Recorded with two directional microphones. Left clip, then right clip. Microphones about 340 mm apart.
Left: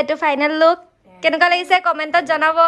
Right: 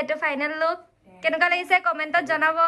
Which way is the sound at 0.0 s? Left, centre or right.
Centre.